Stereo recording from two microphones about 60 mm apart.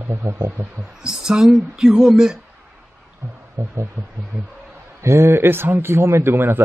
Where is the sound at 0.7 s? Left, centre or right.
Centre.